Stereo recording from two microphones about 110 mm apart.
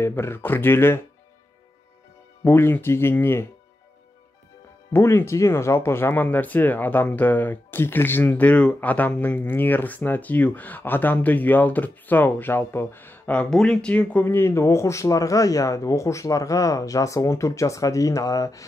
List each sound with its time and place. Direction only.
0.0 s speech: 20° left (ahead or behind)
2.4 s speech: 20° left (ahead or behind)
4.9 s speech: 25° left (ahead or behind)